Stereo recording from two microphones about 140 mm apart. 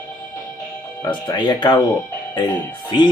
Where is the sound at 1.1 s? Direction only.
30° left (ahead or behind).